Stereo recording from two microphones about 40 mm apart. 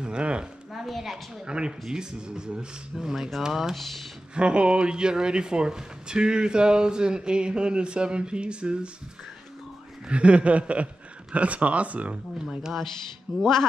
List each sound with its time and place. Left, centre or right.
0.0 s a sound: right
0.7 s speech: centre
1.4 s speech: right
3.2 s speech: centre
3.4 s speech: centre
3.7 s speech: centre
4.4 s speech: right
10.0 s speech: right
13.4 s speech: centre